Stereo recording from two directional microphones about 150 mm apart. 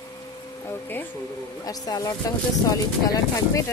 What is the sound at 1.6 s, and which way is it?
Speech, 25° left (ahead or behind).